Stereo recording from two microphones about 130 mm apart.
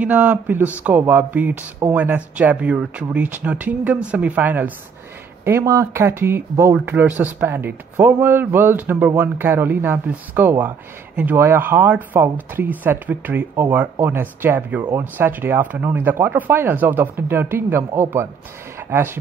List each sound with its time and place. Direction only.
0.0 s speech: 10° right (ahead or behind)